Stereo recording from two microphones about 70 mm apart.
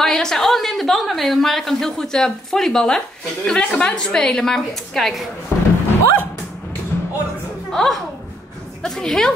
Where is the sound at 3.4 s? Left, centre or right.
Centre.